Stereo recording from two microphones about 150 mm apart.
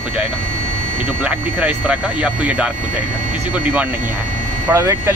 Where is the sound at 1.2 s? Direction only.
10° right (ahead or behind).